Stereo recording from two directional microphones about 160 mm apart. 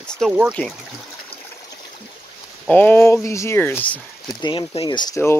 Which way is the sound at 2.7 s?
10° left (ahead or behind).